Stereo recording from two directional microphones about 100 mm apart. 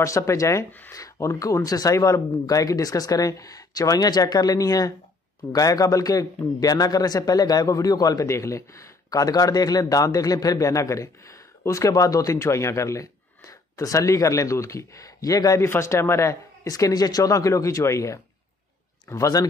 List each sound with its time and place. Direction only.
0.0 s a man's voice: 30° left (ahead or behind)
0.7 s speech: 20° left (ahead or behind)
0.9 s a man's voice: 30° left (ahead or behind)